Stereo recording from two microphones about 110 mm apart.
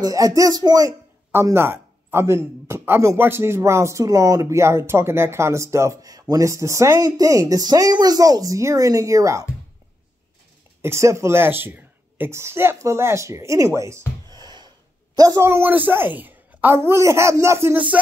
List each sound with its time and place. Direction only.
0.0 s speech: 30° right (ahead or behind)
1.3 s speech: 20° right (ahead or behind)
10.8 s speech: 25° right (ahead or behind)
14.3 s gasp: 40° right (ahead or behind)
15.1 s speech: 35° right (ahead or behind)
15.4 s speech: 20° right (ahead or behind)